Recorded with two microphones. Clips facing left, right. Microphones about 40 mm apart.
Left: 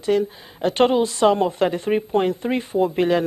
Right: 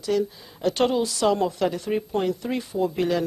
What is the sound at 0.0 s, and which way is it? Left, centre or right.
A woman's voice, left.